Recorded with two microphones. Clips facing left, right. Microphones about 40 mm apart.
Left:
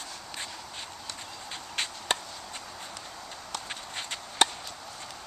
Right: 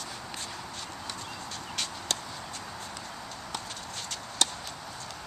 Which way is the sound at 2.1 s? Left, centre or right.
Left.